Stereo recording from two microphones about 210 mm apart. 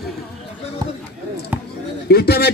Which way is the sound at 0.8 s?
20° right (ahead or behind).